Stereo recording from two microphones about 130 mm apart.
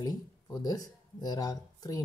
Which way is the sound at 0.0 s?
30° left (ahead or behind).